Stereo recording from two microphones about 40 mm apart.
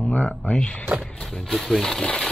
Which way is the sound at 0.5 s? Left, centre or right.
Left.